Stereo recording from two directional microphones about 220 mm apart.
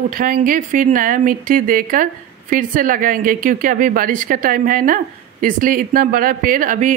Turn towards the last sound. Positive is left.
turn(degrees=-35)  # may be behind; listen again after turning